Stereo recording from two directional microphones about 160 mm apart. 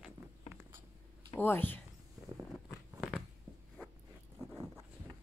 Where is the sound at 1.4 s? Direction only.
10° left (ahead or behind).